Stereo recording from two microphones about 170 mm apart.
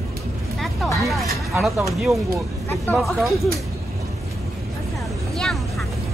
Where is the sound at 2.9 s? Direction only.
Centre (ahead or behind).